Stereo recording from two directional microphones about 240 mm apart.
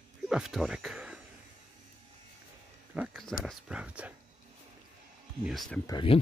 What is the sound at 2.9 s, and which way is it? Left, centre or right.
Speech, centre.